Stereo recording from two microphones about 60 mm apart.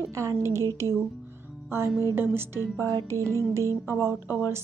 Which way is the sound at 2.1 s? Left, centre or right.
Right.